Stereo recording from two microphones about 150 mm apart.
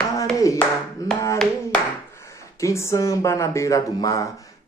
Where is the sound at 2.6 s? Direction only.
20° left (ahead or behind).